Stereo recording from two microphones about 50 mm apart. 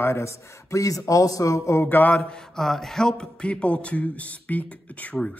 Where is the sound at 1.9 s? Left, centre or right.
Left.